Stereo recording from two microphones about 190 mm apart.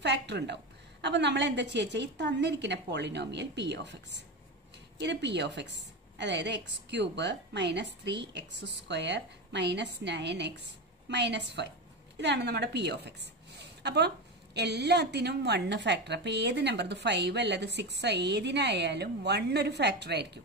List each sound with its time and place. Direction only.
0.0 s a woman's voice: 65° right (ahead or behind)